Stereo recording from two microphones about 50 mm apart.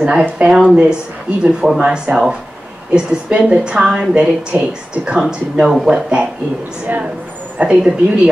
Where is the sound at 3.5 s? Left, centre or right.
Right.